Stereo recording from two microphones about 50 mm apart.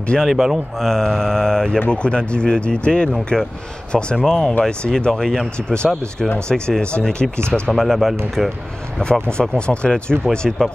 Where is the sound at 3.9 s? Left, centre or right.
Centre.